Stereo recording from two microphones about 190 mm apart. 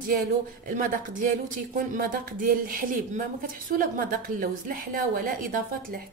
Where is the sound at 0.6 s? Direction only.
45° right (ahead or behind).